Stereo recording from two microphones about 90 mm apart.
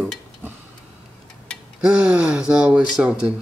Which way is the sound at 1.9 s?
15° right (ahead or behind).